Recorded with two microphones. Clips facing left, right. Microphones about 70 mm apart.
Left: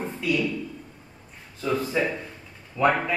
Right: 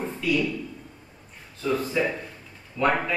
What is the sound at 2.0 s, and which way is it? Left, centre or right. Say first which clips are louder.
Speech: even; centre.